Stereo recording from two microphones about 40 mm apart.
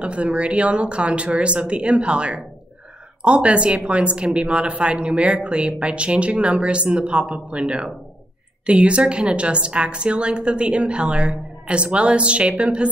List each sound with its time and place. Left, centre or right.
0.0 s a woman's voice: right